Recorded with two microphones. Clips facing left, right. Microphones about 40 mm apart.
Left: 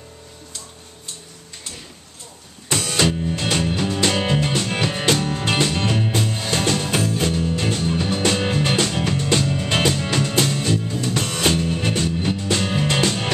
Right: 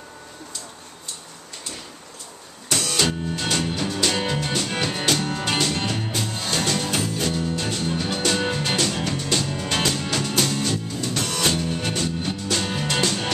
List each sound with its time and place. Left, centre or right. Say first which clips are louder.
3.3 s music: left 3 dB; left